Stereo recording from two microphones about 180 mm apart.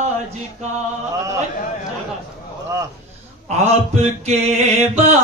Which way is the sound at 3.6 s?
35° right (ahead or behind).